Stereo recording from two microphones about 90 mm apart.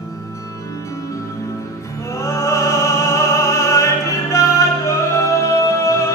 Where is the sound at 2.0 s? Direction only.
35° left (ahead or behind).